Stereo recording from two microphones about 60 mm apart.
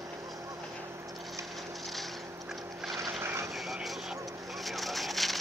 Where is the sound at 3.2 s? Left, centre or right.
Right.